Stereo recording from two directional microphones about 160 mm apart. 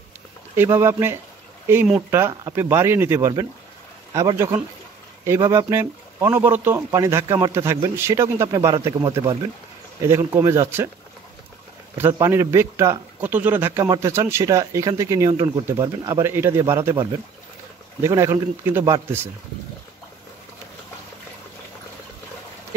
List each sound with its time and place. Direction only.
0.6 s a man's voice: 15° right (ahead or behind)
12.1 s a man's voice: 15° right (ahead or behind)
18.0 s speech: 20° right (ahead or behind)